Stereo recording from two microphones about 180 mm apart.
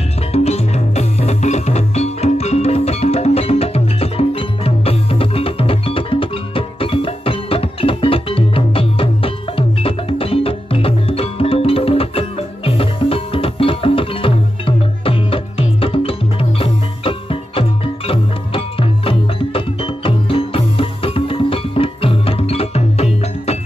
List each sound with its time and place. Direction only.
0.3 s music: 35° left (ahead or behind)